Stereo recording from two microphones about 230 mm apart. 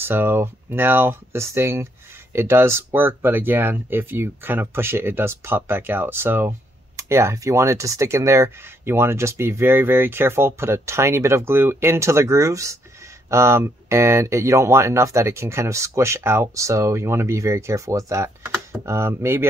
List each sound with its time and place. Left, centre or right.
0.0 s speech: centre